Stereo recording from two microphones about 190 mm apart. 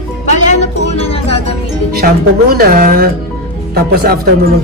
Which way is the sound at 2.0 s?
55° right (ahead or behind).